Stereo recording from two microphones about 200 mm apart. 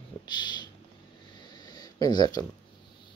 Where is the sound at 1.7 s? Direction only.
20° left (ahead or behind).